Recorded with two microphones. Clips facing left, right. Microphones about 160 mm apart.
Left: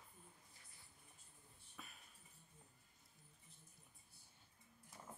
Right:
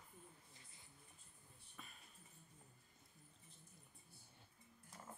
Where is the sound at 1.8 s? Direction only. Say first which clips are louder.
Left 1 dB; 5° left (ahead or behind).